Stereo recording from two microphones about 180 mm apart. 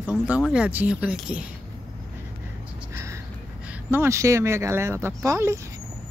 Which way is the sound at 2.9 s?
15° right (ahead or behind).